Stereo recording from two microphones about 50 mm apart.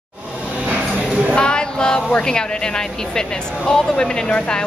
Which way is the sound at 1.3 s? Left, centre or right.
Centre.